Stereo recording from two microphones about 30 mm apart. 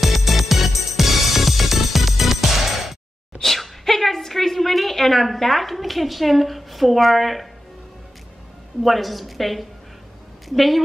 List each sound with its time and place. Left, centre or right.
0.0 s music: centre
3.4 s a sound: centre
8.8 s a woman's voice: centre